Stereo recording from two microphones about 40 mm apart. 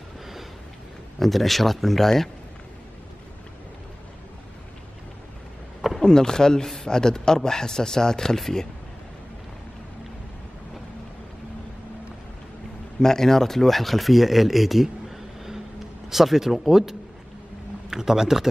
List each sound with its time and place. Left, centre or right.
1.2 s speech: centre
5.9 s speech: centre
13.0 s speech: centre